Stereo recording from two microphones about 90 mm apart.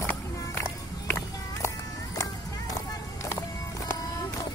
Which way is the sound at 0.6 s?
25° left (ahead or behind).